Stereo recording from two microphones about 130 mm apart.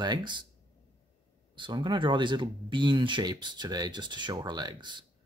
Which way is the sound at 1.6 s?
35° right (ahead or behind).